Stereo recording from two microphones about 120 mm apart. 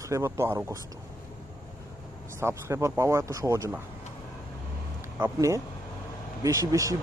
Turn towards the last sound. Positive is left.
turn(degrees=-25)  # may be behind; listen again after turning